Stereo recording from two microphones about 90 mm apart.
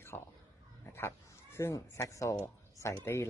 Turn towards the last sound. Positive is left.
turn(degrees=30)  # may be behind; listen again after turning